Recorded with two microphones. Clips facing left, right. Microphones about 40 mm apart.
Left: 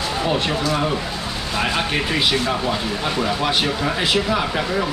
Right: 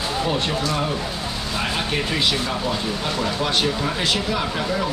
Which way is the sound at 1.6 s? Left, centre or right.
Centre.